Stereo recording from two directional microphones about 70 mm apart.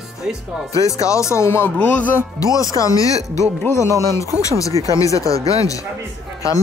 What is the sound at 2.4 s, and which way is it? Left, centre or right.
Speech, left.